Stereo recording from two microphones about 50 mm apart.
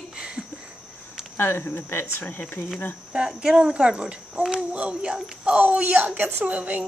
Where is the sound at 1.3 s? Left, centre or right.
Left.